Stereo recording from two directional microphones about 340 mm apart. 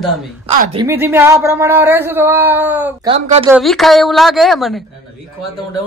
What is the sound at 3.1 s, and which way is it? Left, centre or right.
Speech, centre.